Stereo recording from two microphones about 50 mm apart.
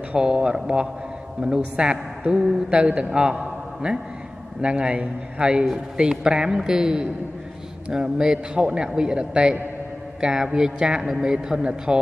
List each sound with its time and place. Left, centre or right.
0.1 s a man's voice: centre